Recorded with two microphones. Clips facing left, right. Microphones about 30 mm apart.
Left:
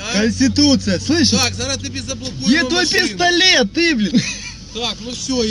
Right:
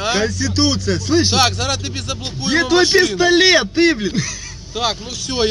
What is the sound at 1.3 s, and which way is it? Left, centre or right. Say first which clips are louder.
Speech: right 2 dB; right.